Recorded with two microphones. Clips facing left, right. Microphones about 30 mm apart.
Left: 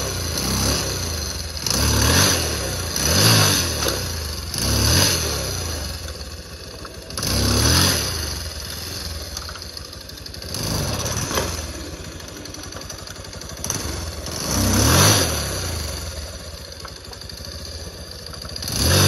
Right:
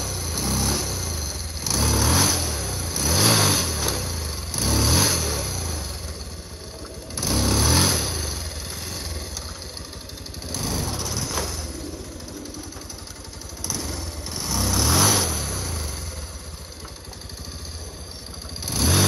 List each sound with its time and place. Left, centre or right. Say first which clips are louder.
0.0 s vehicle: left 3 dB; left
4.2 s vehicle: left 2 dB; left
7.2 s vehicle: left 1 dB; left
8.8 s vehicle: left 1 dB; left
10.5 s vehicle: left 2 dB; left
13.7 s vehicle: left 2 dB; left
18.6 s vehicle: left 2 dB; left